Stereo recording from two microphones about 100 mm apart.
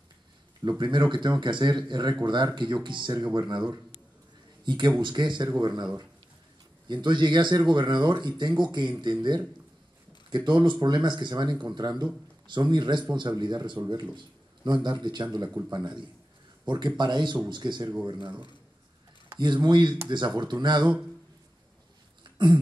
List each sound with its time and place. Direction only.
0.7 s speech: 50° right (ahead or behind)
6.9 s a man's voice: 50° right (ahead or behind)
22.4 s a sound: 55° right (ahead or behind)